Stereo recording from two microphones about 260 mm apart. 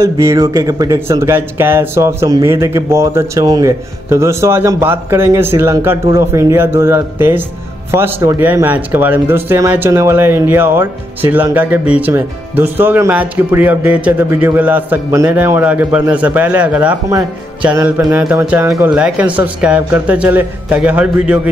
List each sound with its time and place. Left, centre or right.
0.0 s speech: centre